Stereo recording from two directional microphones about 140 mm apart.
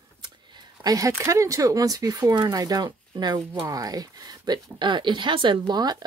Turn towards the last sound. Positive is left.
turn(degrees=-30)  # may be behind; listen again after turning